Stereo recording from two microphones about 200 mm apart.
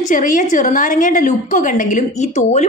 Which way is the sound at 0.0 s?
40° left (ahead or behind).